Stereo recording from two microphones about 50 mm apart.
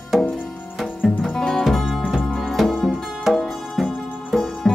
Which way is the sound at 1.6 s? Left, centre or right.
Centre.